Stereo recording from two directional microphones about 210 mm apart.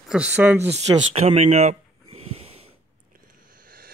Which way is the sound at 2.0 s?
90° right.